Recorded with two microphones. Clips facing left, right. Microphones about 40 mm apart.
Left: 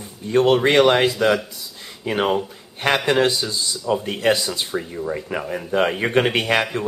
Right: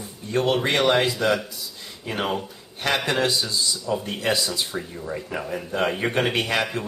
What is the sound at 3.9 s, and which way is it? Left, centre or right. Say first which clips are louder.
Speech: left 6 dB; left.